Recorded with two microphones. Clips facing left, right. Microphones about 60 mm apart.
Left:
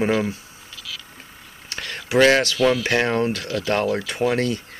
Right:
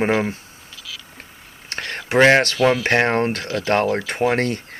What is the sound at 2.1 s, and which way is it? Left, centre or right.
Speech, right.